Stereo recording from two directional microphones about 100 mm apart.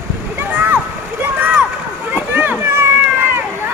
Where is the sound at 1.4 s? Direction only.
15° right (ahead or behind).